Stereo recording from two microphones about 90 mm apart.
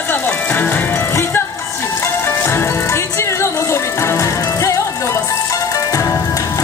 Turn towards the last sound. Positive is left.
turn(degrees=35)  # may be behind; listen again after turning